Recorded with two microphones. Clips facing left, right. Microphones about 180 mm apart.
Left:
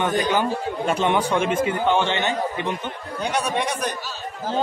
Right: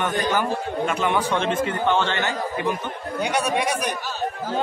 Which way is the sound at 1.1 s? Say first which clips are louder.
Left 1 dB; 10° left (ahead or behind).